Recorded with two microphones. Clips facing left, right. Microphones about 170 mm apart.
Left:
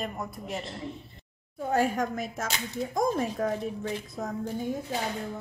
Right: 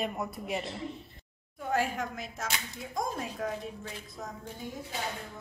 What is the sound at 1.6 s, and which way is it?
A woman's voice, 40° left (ahead or behind).